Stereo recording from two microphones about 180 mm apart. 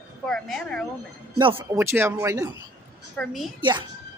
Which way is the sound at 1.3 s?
20° right (ahead or behind).